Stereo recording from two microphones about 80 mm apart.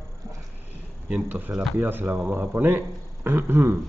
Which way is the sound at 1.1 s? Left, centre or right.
Right.